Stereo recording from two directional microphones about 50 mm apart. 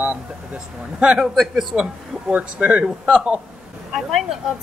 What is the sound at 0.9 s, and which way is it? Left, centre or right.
Speech, right.